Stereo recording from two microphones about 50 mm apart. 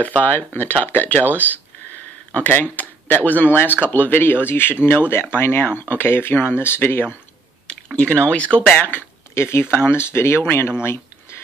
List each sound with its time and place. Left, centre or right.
0.0 s speech: left
2.5 s speech: left
7.6 s speech: left
9.3 s speech: left
10.8 s a sound: left